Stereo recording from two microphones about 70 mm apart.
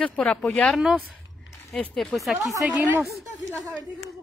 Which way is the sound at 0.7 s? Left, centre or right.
Centre.